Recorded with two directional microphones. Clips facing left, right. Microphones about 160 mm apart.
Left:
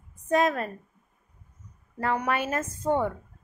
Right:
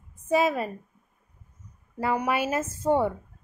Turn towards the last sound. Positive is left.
turn(degrees=-10)  # may be behind; listen again after turning